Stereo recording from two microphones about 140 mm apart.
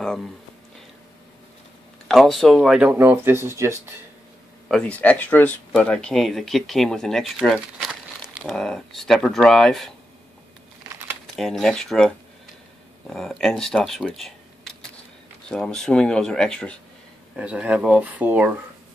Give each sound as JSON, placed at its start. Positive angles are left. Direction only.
{"t": 0.0, "sound": "a sound", "side_deg": 0}
{"t": 2.0, "sound": "speech", "side_deg": 0}
{"t": 3.0, "sound": "speech", "side_deg": -15}
{"t": 4.6, "sound": "speech", "side_deg": 5}
{"t": 11.3, "sound": "speech", "side_deg": 5}
{"t": 17.4, "sound": "speech", "side_deg": -10}